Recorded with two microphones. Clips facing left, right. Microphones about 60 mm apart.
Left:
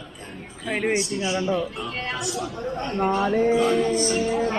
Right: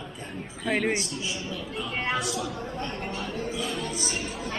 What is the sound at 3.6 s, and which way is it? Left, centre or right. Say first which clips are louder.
Music: left 11 dB; left.